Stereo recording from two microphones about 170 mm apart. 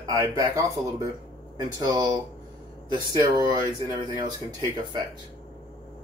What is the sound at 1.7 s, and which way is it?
Speech, 20° right (ahead or behind).